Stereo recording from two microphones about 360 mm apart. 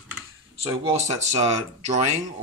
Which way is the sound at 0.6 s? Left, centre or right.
Centre.